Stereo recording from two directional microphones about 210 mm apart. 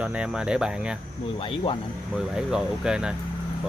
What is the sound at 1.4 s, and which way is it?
Speech, 25° left (ahead or behind).